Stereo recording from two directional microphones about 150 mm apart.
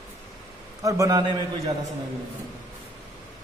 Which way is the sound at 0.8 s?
20° right (ahead or behind).